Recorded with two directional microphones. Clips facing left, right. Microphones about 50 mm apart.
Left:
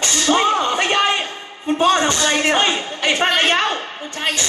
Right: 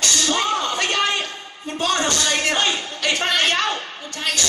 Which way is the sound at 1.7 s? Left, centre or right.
Left.